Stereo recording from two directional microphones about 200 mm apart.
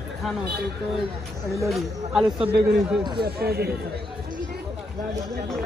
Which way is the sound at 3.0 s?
20° right (ahead or behind).